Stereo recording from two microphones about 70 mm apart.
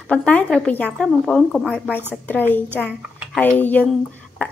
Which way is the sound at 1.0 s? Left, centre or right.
Centre.